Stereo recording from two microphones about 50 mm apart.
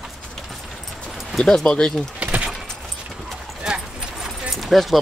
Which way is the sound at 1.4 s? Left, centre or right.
Centre.